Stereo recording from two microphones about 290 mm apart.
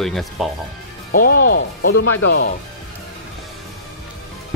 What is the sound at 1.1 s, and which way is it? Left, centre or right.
Speech, left.